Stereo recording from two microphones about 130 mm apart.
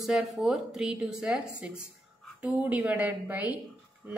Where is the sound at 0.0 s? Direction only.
Centre (ahead or behind).